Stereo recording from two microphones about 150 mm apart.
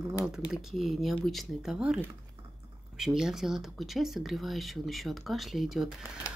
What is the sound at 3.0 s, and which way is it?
Speech, 5° right (ahead or behind).